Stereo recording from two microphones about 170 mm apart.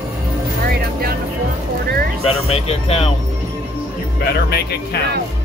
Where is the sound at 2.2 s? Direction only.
35° left (ahead or behind).